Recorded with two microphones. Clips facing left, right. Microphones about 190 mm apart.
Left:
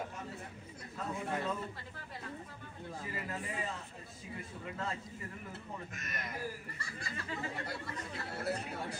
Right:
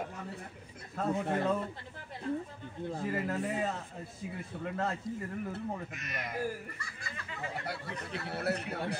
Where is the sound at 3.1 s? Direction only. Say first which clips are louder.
Right 7 dB; 70° right (ahead or behind).